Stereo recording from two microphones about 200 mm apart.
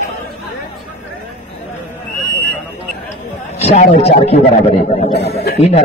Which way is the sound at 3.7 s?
35° left (ahead or behind).